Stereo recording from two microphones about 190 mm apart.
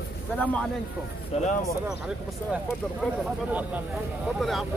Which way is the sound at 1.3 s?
35° left (ahead or behind).